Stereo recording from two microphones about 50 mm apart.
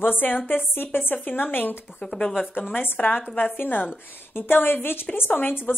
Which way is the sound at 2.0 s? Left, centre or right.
Centre.